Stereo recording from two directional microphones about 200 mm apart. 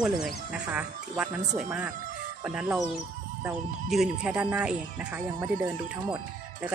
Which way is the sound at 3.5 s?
5° right (ahead or behind).